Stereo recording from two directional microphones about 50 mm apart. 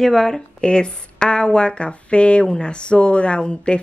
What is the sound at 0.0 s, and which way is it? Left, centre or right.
Speech, centre.